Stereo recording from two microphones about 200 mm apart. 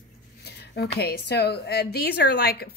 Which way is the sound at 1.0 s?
50° left (ahead or behind).